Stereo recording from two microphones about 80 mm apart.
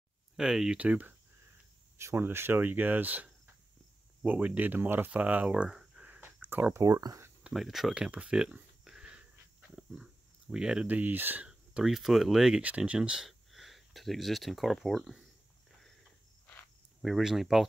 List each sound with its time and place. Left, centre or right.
0.4 s speech: centre
0.7 s speech: centre
2.0 s speech: right
4.3 s speech: centre
6.0 s a sound: right
6.7 s speech: right
7.5 s speech: centre
8.8 s wheeze: centre
10.5 s speech: centre
11.4 s speech: centre
12.6 s speech: centre
17.0 s speech: centre